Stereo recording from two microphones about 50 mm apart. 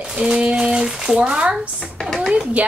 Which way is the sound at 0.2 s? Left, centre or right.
Centre.